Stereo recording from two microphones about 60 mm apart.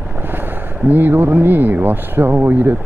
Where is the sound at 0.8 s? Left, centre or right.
Right.